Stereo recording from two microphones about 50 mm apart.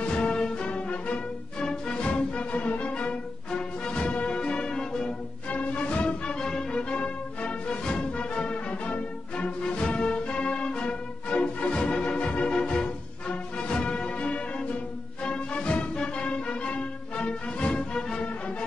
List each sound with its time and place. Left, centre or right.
0.0 s music: centre
5.5 s music: left